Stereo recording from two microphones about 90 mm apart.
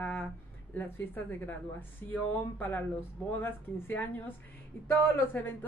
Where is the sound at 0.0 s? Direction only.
20° left (ahead or behind).